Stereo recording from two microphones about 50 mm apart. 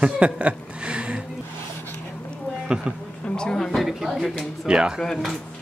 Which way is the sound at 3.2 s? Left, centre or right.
Centre.